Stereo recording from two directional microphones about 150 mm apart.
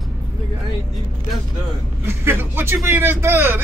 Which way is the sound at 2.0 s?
15° right (ahead or behind).